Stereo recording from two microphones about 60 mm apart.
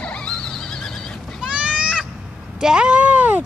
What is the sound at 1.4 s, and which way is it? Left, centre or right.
Goat, centre.